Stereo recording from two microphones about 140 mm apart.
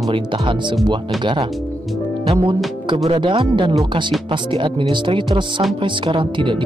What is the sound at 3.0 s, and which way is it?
Speech, 40° right (ahead or behind).